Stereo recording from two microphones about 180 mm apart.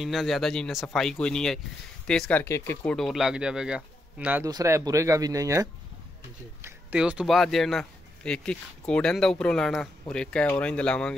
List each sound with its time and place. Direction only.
0.0 s speech: centre (ahead or behind)
3.0 s speech: centre (ahead or behind); by 5.7 s 20° right (ahead or behind)
6.6 s speech: 5° right (ahead or behind)